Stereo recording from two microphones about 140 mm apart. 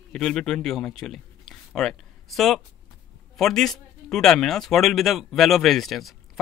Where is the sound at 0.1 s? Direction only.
5° left (ahead or behind).